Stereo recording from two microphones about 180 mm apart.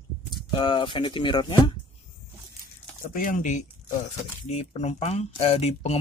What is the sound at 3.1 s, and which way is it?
Speech, 50° left (ahead or behind).